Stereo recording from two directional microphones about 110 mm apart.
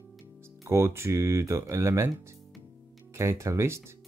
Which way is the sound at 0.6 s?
25° right (ahead or behind).